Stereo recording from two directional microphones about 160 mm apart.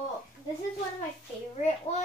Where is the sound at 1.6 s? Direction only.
45° left (ahead or behind).